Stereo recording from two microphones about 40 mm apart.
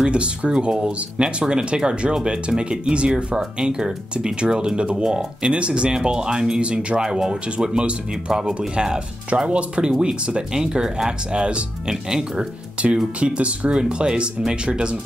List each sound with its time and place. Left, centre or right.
0.0 s speech: right
11.9 s speech: centre
12.9 s speech: right